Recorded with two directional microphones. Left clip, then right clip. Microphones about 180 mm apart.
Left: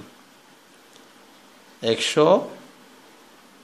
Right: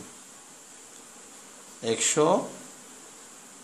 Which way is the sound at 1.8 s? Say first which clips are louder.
Left 5 dB; 25° left (ahead or behind).